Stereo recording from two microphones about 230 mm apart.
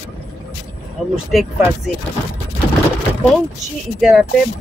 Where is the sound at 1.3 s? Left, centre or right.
Centre.